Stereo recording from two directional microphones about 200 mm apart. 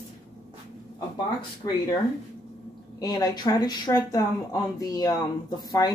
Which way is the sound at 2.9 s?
20° left (ahead or behind).